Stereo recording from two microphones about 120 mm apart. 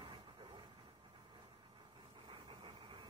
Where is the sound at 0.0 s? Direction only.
40° right (ahead or behind).